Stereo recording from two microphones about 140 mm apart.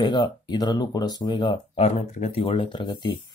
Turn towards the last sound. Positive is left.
turn(degrees=30)  # may be behind; listen again after turning